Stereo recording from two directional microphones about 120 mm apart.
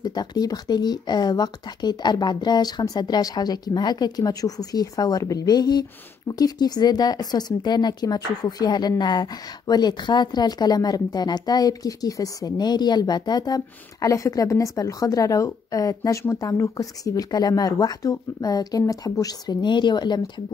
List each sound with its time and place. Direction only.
0.0 s a woman's voice: 35° left (ahead or behind)